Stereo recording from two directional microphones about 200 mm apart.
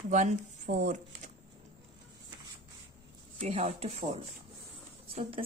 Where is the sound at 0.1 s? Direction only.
35° right (ahead or behind).